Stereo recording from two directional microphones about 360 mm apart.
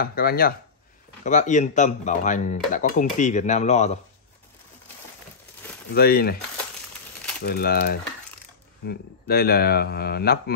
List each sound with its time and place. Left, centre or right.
0.0 s speech: left
5.9 s speech: left
7.4 s speech: left